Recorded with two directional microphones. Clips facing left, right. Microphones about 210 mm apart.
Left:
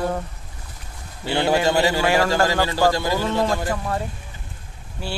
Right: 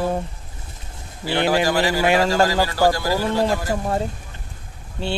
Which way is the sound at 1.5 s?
25° left (ahead or behind).